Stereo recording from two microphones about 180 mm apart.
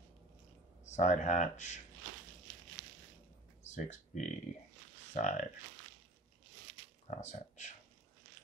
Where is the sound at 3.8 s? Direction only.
40° left (ahead or behind).